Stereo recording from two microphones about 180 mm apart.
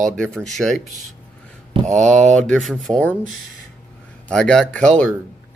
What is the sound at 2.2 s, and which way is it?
Speech, 40° right (ahead or behind).